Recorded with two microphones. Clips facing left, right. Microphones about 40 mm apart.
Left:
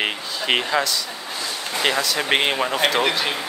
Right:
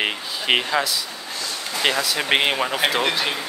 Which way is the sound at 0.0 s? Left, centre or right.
Centre.